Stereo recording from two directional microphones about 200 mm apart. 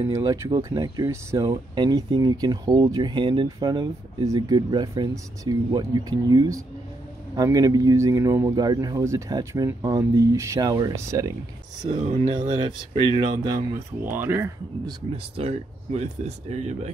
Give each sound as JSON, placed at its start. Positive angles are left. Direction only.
{"t": 0.0, "sound": "a man's voice", "side_deg": -15}
{"t": 12.0, "sound": "speech", "side_deg": -35}
{"t": 12.3, "sound": "speech", "side_deg": -20}
{"t": 14.1, "sound": "speech", "side_deg": -10}